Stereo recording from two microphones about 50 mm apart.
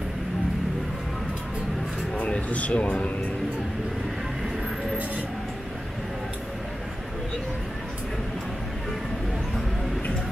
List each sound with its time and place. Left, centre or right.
2.1 s speech: left